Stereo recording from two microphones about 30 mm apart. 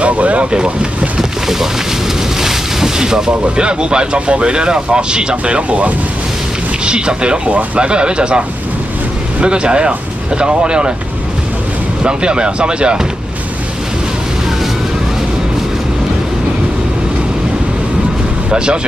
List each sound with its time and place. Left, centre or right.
0.0 s boat: right
2.4 s speech: right
5.7 s speech: right
6.9 s speech: right
7.4 s speech: right
7.8 s speech: right
12.0 s speech: right